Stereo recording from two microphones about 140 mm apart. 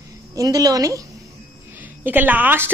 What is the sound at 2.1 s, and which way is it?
Speech, 15° right (ahead or behind).